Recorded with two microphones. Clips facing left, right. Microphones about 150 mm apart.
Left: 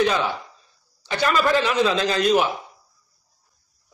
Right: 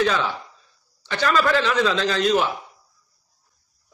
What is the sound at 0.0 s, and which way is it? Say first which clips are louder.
A man's voice: left 1 dB; 15° left (ahead or behind).